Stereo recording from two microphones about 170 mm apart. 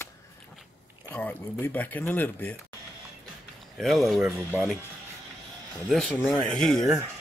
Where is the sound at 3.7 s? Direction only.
Centre (ahead or behind).